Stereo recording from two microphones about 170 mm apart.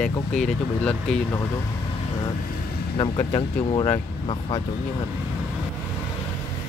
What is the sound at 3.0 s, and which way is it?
Speech, 30° left (ahead or behind).